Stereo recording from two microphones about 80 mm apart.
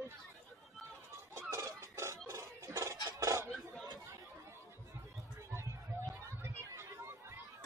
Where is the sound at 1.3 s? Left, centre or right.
Right.